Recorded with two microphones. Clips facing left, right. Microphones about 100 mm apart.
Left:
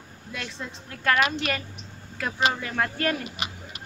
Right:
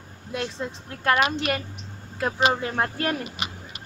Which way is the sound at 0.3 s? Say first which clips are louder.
Right 6 dB; 25° right (ahead or behind).